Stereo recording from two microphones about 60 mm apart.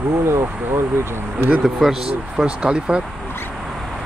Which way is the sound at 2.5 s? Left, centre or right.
Centre.